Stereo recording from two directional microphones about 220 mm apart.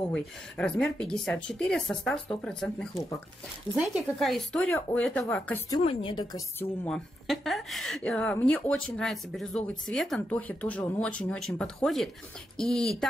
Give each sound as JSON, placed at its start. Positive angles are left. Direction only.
{"t": 0.1, "sound": "a woman's voice", "side_deg": 5}
{"t": 6.8, "sound": "speech", "side_deg": 0}